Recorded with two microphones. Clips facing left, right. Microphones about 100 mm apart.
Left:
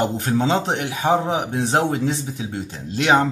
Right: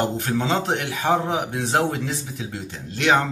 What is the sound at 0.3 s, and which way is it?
Speech, 30° left (ahead or behind).